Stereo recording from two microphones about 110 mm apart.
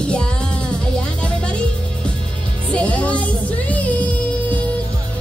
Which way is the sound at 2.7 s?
10° left (ahead or behind).